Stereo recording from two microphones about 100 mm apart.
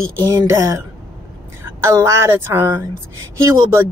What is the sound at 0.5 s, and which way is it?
A woman's voice, 25° right (ahead or behind).